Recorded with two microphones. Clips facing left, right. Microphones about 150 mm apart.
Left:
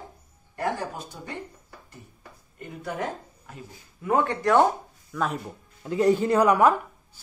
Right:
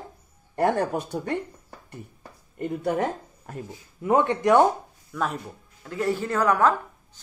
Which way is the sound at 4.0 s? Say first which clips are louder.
Right 3 dB; 20° right (ahead or behind).